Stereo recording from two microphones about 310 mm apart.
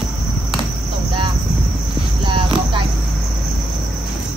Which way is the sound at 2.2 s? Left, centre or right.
Centre.